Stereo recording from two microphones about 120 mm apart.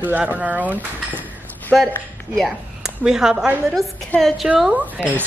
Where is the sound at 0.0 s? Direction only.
15° right (ahead or behind).